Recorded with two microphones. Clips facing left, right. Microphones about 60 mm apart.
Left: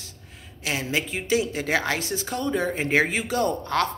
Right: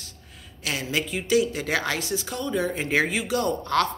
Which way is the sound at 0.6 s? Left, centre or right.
Left.